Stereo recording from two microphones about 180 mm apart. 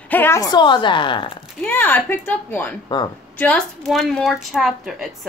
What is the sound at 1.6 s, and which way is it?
A woman's voice, 10° left (ahead or behind).